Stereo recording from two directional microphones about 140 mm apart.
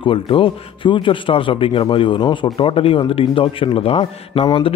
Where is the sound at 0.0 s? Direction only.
40° left (ahead or behind).